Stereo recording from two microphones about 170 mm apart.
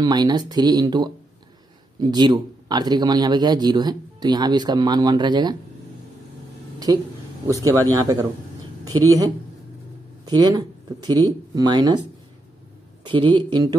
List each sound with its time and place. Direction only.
0.0 s a man's voice: 25° right (ahead or behind)
6.9 s a man's voice: 20° right (ahead or behind)
13.0 s a man's voice: 30° right (ahead or behind)